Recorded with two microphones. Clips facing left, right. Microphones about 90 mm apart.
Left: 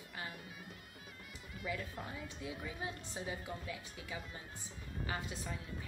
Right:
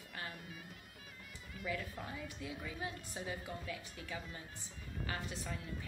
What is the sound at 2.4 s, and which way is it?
Speech, 20° left (ahead or behind).